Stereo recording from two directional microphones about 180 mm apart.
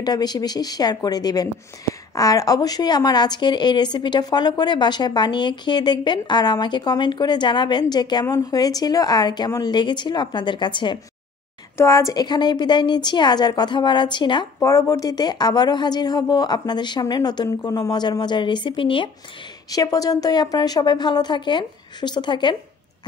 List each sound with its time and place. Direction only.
0.0 s speech: 20° left (ahead or behind)
11.7 s speech: 15° left (ahead or behind)